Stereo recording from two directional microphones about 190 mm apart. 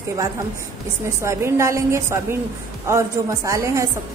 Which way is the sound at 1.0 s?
15° right (ahead or behind).